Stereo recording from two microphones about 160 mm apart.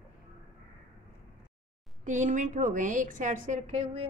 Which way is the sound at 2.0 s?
50° right (ahead or behind).